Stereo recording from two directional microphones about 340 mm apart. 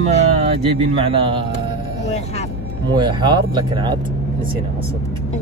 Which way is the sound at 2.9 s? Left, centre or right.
Centre.